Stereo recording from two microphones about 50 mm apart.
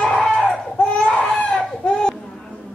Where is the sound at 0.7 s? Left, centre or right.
Left.